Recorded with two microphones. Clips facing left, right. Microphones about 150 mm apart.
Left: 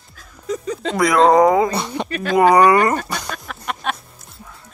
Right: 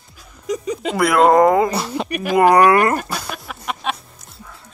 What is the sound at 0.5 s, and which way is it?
Speech, 10° right (ahead or behind).